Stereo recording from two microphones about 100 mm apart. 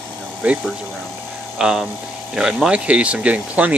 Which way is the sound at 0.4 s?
15° right (ahead or behind).